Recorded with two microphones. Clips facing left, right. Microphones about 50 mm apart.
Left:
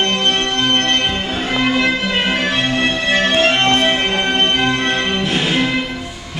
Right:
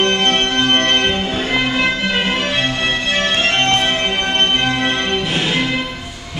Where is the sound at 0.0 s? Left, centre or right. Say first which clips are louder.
Right 1 dB; right.